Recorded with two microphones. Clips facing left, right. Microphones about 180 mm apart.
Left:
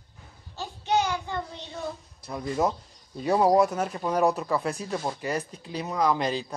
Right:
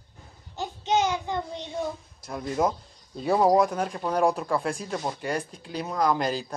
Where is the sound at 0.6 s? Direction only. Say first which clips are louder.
Right 1 dB; 20° right (ahead or behind).